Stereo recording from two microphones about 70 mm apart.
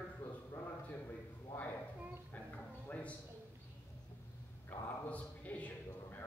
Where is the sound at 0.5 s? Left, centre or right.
Left.